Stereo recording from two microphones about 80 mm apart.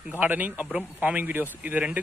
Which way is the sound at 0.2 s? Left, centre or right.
Right.